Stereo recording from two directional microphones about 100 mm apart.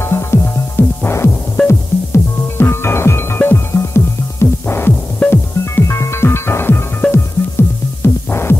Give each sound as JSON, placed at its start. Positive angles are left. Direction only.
{"t": 0.0, "sound": "music", "side_deg": 25}
{"t": 8.0, "sound": "throbbing", "side_deg": 25}